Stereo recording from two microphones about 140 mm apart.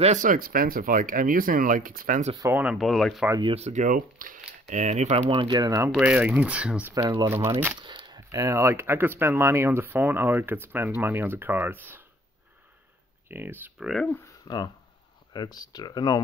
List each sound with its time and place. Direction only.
0.0 s speech: 60° right (ahead or behind); by 2.2 s 80° right
2.5 s speech: 5° right (ahead or behind)
3.4 s speech: 50° right (ahead or behind)
5.4 s speech: 30° right (ahead or behind)
5.9 s speech: 10° right (ahead or behind)
6.9 s speech: 25° right (ahead or behind)
7.8 s speech: 35° right (ahead or behind); by 12.0 s 15° right (ahead or behind)
13.3 s speech: 15° right (ahead or behind)
14.0 s speech: 15° left (ahead or behind)
15.3 s speech: 30° left (ahead or behind)